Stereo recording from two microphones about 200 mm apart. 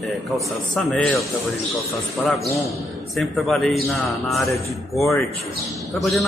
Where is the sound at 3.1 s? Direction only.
Centre (ahead or behind).